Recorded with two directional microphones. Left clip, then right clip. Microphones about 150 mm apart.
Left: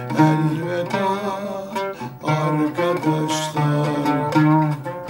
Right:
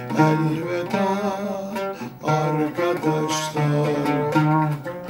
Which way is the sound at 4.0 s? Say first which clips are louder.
Left 2 dB; 20° right (ahead or behind).